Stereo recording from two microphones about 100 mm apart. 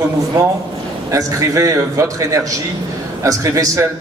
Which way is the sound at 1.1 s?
35° right (ahead or behind).